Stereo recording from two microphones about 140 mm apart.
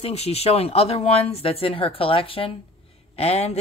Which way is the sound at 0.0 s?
45° left (ahead or behind).